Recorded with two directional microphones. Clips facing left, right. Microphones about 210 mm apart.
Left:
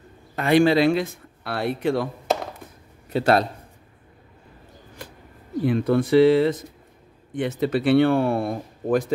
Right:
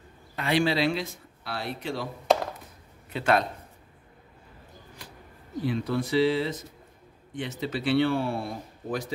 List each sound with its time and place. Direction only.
0.4 s speech: 50° left (ahead or behind)
3.1 s a man's voice: 40° left (ahead or behind)
5.7 s speech: 55° left (ahead or behind)